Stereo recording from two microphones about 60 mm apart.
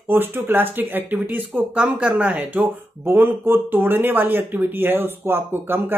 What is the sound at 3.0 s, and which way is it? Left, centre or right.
Speech, right.